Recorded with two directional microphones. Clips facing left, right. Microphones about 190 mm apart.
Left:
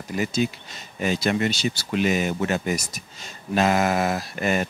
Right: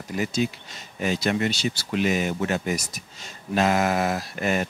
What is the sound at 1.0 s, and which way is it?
Speech, 10° left (ahead or behind).